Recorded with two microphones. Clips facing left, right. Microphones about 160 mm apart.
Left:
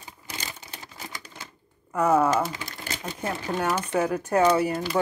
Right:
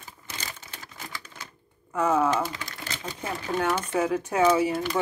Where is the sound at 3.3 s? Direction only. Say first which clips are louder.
Even; 5° left (ahead or behind).